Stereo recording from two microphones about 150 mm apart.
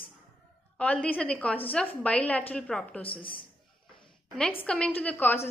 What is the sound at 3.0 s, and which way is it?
Speech, 35° left (ahead or behind).